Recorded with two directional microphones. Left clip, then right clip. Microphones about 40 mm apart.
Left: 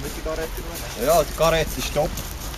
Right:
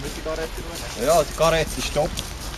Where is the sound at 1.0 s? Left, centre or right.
Centre.